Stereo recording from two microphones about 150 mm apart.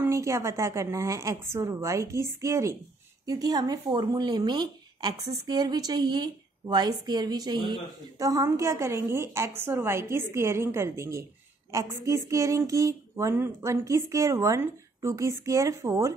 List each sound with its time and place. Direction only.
0.0 s a woman's voice: 20° right (ahead or behind)